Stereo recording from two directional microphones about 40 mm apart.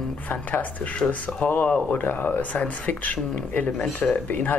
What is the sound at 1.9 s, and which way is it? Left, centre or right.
Speech, left.